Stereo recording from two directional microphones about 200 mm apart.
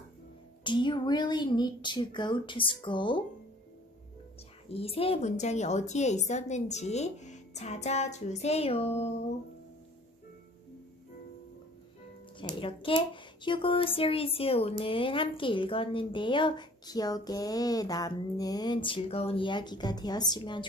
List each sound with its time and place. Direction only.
0.7 s speech: 25° left (ahead or behind)
4.7 s a woman's voice: 30° left (ahead or behind)
12.5 s speech: 25° left (ahead or behind)